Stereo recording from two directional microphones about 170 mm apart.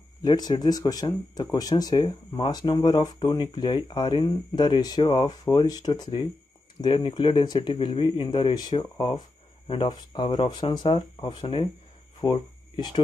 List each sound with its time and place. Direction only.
0.2 s speech: 25° left (ahead or behind)